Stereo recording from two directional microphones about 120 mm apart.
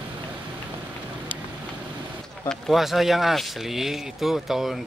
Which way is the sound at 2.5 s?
Centre (ahead or behind).